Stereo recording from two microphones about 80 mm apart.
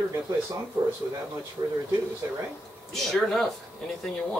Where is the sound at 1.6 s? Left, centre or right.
Right.